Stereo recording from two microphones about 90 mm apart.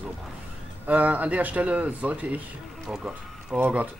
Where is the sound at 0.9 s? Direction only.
15° right (ahead or behind).